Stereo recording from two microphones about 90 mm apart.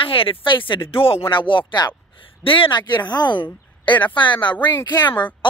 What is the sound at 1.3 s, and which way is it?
Speech, 65° left (ahead or behind).